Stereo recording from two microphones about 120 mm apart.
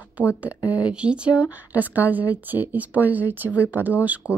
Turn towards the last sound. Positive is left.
turn(degrees=-15)  # may be behind; listen again after turning